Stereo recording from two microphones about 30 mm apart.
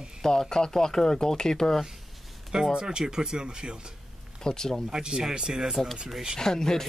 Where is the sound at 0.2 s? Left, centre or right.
Centre.